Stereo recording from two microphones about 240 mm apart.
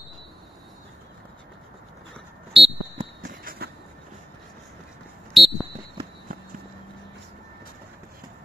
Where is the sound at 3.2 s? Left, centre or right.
Right.